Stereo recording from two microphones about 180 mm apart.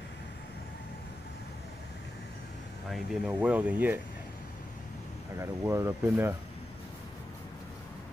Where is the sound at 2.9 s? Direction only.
5° right (ahead or behind).